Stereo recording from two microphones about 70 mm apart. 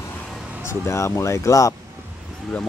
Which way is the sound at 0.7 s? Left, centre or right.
Left.